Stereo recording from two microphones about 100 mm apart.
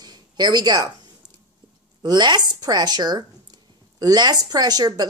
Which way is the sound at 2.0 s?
45° right (ahead or behind).